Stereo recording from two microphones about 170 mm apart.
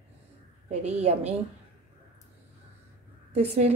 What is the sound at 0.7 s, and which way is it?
Speech, 40° right (ahead or behind).